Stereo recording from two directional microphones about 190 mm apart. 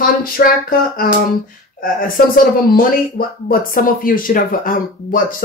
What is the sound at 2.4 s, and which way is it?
Speech, 50° left (ahead or behind).